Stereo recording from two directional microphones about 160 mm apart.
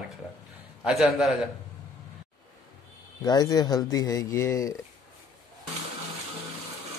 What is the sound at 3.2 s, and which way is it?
Speech, 25° left (ahead or behind).